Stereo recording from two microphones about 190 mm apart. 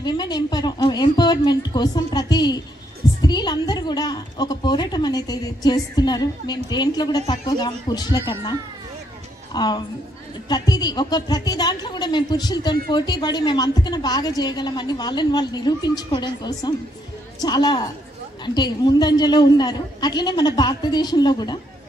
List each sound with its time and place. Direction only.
0.0 s a woman's voice: 20° left (ahead or behind)